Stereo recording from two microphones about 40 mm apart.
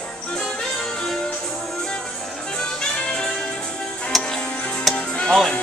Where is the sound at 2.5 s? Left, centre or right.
Centre.